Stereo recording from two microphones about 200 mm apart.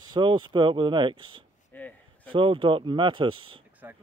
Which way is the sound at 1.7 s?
10° left (ahead or behind).